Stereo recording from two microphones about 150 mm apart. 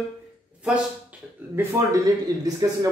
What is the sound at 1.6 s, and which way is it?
Speech, 15° right (ahead or behind).